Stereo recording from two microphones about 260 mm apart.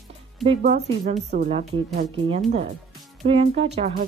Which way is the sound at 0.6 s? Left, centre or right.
Right.